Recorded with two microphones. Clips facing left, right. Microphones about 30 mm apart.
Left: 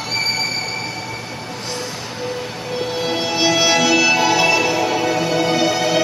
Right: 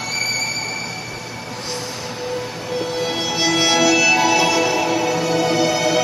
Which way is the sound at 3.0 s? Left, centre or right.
Left.